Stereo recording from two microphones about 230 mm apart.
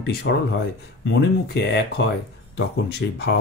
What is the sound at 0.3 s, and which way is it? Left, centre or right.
Speech, left.